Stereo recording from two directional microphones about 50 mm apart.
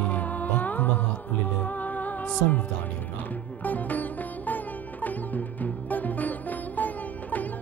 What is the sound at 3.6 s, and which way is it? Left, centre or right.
Sitar, left.